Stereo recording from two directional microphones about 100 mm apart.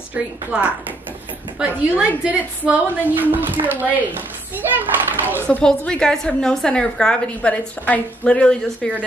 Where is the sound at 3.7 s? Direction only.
15° right (ahead or behind).